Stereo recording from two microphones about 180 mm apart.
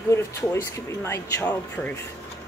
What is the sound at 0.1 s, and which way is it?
Speech, 15° left (ahead or behind).